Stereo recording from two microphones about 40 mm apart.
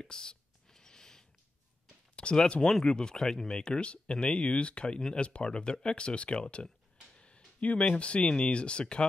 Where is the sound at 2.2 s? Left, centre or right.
Left.